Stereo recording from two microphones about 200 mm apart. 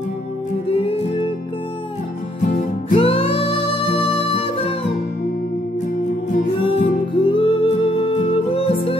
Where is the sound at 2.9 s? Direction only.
30° left (ahead or behind).